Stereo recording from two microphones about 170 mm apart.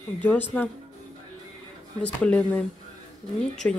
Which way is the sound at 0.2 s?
10° left (ahead or behind).